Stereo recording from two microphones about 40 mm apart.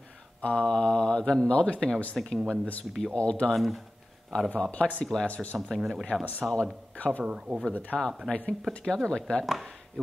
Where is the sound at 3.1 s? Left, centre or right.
Left.